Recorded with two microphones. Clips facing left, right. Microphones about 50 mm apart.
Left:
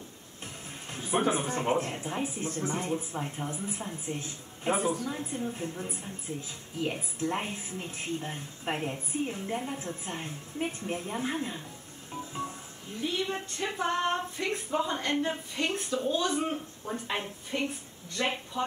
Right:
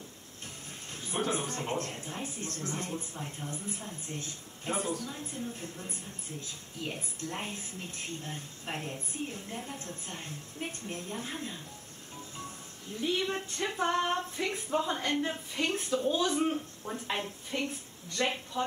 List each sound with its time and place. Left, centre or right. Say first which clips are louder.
0.9 s a man's voice: left 5 dB; centre
2.2 s a man's voice: left 6 dB; centre
7.2 s a woman's voice: left 6 dB; left
13.0 s speech: even; centre
16.3 s a man's voice: right 1 dB; centre